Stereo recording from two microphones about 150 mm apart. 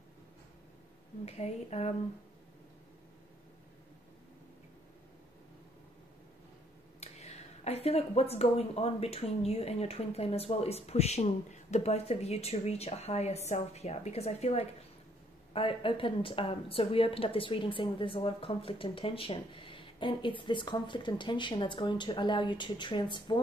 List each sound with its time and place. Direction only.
1.2 s speech: 45° left (ahead or behind)
7.0 s a woman's voice: 45° left (ahead or behind)